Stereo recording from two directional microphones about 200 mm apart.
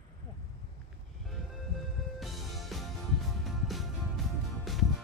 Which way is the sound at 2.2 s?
Centre (ahead or behind).